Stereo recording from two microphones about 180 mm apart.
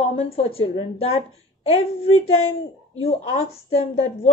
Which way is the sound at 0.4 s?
30° left (ahead or behind).